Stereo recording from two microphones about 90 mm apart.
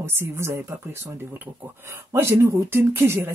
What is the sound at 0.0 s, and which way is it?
Speech, 25° right (ahead or behind).